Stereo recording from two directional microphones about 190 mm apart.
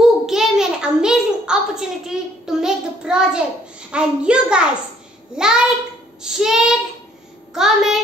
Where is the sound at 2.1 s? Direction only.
5° right (ahead or behind).